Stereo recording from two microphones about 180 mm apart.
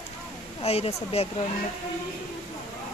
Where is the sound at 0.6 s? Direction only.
35° left (ahead or behind).